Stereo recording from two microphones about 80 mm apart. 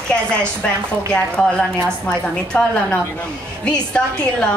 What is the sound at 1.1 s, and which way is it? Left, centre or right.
A woman's voice, centre.